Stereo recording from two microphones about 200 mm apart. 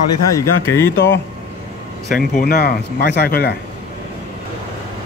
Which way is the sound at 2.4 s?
50° left (ahead or behind).